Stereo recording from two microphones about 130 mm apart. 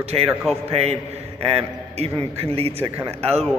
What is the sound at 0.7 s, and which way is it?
A man's voice, 55° right (ahead or behind).